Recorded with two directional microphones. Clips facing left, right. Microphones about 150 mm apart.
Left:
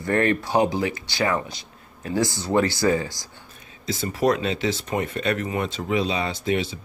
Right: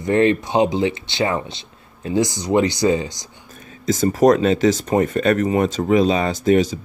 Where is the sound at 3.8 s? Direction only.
45° right (ahead or behind).